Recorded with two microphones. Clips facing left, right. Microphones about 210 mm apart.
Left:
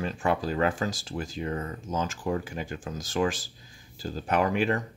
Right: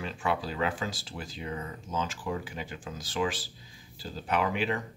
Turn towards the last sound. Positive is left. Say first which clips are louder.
# left 4 dB
turn(degrees=45)  # may be behind; listen again after turning